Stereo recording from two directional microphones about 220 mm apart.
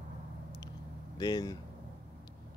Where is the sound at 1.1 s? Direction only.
20° left (ahead or behind).